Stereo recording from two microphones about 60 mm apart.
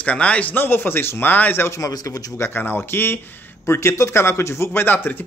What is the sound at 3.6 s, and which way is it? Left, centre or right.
Speech, left.